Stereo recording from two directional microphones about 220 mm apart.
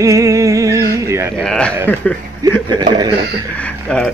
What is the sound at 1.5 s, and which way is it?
Speech, 5° left (ahead or behind).